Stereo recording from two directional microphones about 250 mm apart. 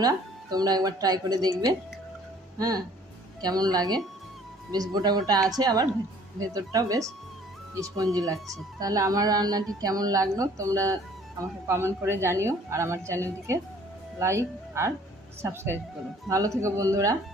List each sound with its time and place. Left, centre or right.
0.0 s a woman's voice: centre
3.3 s a woman's voice: centre